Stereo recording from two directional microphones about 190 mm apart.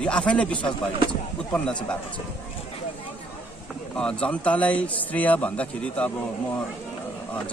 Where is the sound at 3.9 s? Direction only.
5° left (ahead or behind).